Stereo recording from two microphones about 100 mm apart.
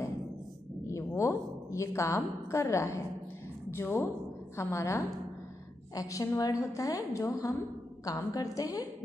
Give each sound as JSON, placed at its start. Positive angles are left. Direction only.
{"t": 0.8, "sound": "a woman's voice", "side_deg": 30}